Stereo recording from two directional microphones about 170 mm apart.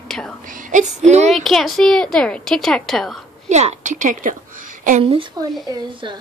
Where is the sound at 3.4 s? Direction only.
45° right (ahead or behind).